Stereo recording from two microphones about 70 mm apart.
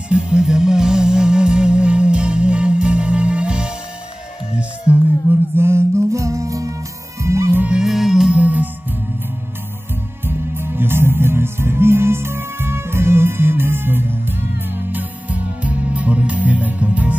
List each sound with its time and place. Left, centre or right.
0.1 s music: centre
4.9 s music: right
5.2 s a sound: right
5.6 s music: right
7.7 s music: centre
8.4 s music: right
10.2 s music: right